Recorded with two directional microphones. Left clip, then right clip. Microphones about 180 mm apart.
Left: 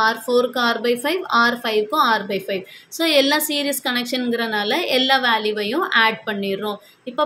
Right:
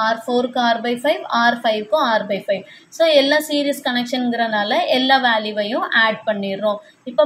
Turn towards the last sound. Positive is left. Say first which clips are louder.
# right 7 dB
turn(degrees=30)  # may be behind; listen again after turning